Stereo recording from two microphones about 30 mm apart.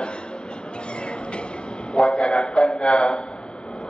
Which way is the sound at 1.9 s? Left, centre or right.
Left.